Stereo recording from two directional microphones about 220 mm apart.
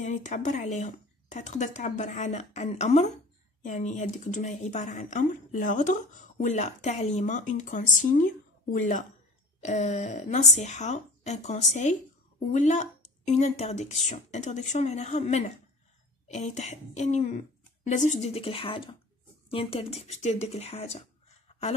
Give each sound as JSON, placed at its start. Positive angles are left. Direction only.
{"t": 0.0, "sound": "speech", "side_deg": 30}